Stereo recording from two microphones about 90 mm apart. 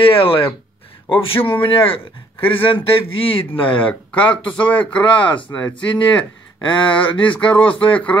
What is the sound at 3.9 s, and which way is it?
Speech, 15° left (ahead or behind).